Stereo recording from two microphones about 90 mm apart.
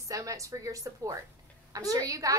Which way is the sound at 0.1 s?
40° right (ahead or behind).